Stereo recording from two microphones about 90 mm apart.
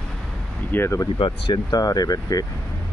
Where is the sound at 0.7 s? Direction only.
25° left (ahead or behind).